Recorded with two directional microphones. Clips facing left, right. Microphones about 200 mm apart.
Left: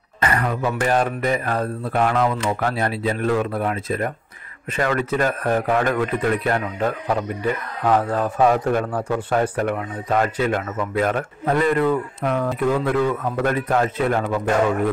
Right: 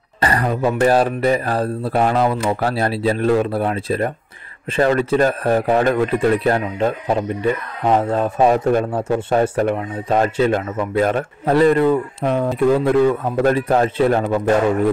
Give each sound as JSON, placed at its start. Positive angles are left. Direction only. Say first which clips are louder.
{"t": 0.2, "sound": "a man's voice", "louder": "right 3 dB", "side_deg": -35}